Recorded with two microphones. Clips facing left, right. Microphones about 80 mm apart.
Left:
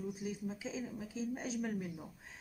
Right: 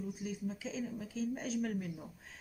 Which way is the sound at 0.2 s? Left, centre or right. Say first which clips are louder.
Right 1 dB; centre.